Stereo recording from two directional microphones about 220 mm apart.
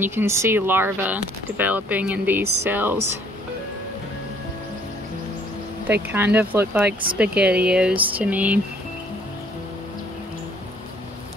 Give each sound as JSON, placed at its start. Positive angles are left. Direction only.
{"t": 0.0, "sound": "speech", "side_deg": -10}
{"t": 6.1, "sound": "speech", "side_deg": -10}